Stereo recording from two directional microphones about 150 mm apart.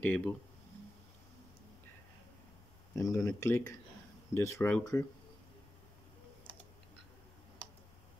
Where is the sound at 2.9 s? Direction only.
20° left (ahead or behind).